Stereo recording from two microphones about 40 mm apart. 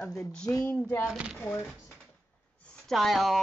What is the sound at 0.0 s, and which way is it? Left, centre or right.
Speech, left.